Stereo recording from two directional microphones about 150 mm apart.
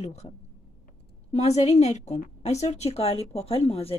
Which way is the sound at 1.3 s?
45° left (ahead or behind).